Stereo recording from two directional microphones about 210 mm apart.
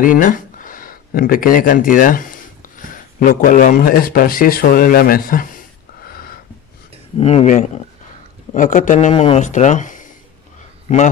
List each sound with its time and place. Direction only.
0.0 s speech: 40° left (ahead or behind)
6.0 s a sound: 45° left (ahead or behind)
7.2 s speech: 30° left (ahead or behind)